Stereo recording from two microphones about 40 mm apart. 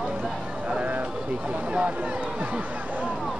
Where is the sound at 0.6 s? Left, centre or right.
Right.